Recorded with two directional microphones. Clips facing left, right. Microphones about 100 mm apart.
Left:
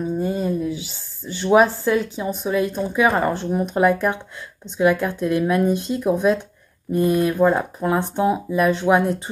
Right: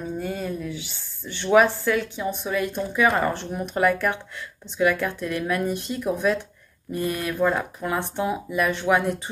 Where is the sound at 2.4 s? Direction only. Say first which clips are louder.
Left 7 dB; 15° left (ahead or behind).